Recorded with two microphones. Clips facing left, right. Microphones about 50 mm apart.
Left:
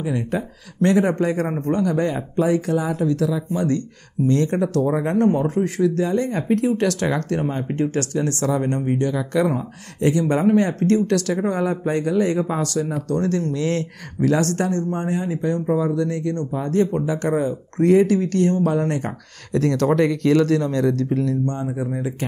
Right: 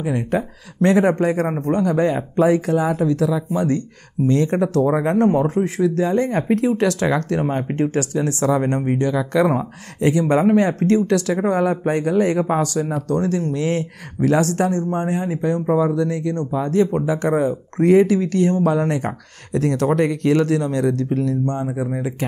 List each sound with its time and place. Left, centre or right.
0.8 s speech: right
5.9 s speech: right
6.8 s speech: right
7.4 s speech: right
7.8 s speech: right
8.5 s speech: right
11.5 s speech: right
12.7 s speech: right
16.0 s speech: centre